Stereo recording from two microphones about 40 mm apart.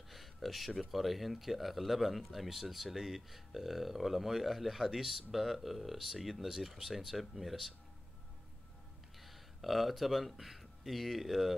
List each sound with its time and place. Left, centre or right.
0.1 s speech: centre
9.2 s speech: centre